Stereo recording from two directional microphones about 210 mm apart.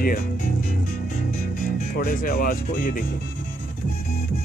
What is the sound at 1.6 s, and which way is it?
Speech, 40° left (ahead or behind).